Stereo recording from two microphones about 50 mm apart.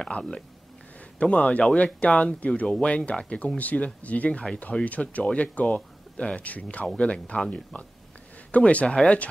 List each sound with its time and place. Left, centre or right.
0.0 s speech: centre
7.0 s speech: centre